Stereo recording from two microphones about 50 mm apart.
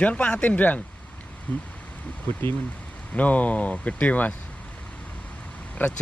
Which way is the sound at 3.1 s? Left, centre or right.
Left.